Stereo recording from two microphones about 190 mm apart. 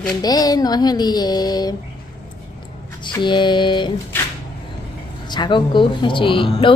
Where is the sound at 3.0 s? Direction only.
25° left (ahead or behind).